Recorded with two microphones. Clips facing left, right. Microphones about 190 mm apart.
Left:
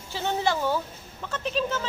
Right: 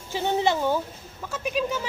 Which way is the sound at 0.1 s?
15° right (ahead or behind).